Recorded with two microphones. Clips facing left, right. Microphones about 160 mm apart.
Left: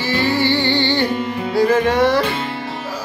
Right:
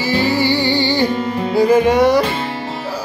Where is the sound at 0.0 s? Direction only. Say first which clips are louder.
Right 2 dB; 10° right (ahead or behind).